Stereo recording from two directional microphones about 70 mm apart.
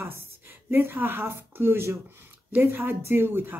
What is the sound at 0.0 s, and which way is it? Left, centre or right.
Speech, right.